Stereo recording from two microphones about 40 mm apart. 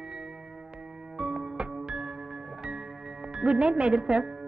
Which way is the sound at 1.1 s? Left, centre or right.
Centre.